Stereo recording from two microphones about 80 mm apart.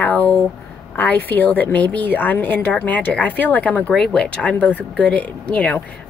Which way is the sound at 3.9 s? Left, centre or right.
Centre.